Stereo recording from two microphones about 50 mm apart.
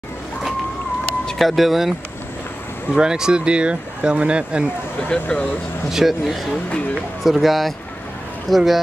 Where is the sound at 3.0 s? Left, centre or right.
Centre.